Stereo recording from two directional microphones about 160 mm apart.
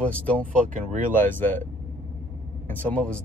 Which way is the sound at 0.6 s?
55° right (ahead or behind).